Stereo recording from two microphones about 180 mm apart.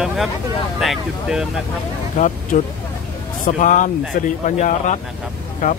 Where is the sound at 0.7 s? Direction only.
Centre (ahead or behind).